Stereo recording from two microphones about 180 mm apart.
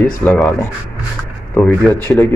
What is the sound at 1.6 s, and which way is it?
Speech, 10° left (ahead or behind).